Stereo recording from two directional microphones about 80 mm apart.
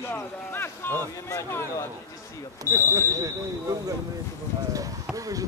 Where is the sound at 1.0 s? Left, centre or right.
Left.